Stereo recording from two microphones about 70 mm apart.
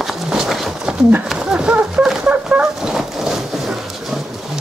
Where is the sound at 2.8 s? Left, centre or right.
Centre.